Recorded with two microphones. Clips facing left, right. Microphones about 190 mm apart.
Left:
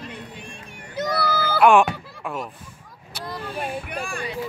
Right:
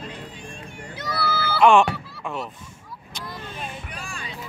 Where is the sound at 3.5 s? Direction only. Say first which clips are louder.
Left 7 dB; 55° left (ahead or behind).